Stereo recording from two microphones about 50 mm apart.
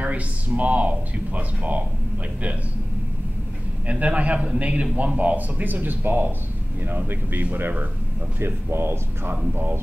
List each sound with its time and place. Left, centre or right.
0.0 s speech: right
3.8 s speech: right